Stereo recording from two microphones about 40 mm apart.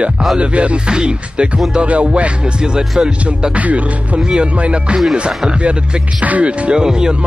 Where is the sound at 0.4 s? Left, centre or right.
Right.